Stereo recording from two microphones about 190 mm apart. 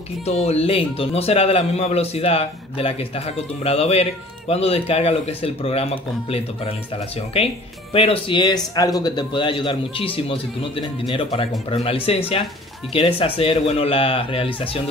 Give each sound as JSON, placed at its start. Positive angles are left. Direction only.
{"t": 0.2, "sound": "a man's voice", "side_deg": 35}
{"t": 7.9, "sound": "a man's voice", "side_deg": 30}